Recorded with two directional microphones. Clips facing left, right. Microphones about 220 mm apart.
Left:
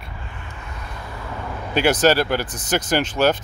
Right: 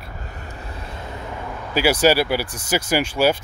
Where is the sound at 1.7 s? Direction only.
10° right (ahead or behind).